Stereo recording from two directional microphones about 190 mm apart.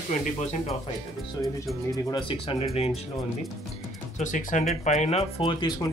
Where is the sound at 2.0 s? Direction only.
25° left (ahead or behind).